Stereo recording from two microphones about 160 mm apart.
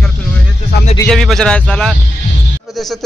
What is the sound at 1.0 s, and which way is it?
A man's voice, centre (ahead or behind).